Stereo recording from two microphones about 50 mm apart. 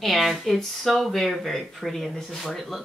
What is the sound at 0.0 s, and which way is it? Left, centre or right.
Speech, centre.